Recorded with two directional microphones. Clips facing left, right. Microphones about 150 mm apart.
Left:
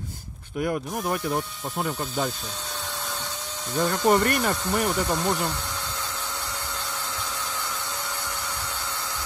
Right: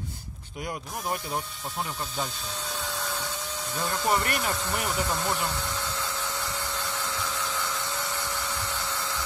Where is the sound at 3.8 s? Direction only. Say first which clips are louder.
Left 6 dB; 50° left (ahead or behind).